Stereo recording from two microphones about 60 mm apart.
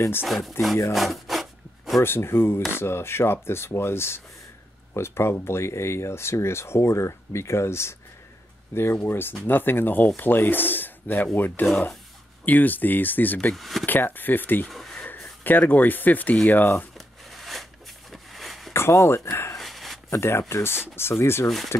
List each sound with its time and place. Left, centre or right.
0.3 s speech: centre
0.9 s rub: centre
2.0 s speech: left
8.9 s speech: left
13.5 s speech: centre
13.8 s speech: left
14.7 s a sound: centre
15.4 s speech: left
17.3 s shuffling cards: centre
18.1 s a sound: centre
18.7 s speech: left
19.5 s a sound: centre
20.1 s speech: left